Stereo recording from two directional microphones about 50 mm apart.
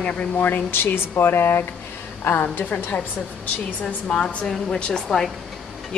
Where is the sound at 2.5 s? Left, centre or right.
Left.